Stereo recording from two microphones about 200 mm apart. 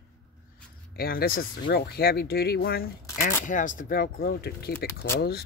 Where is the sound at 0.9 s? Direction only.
50° left (ahead or behind).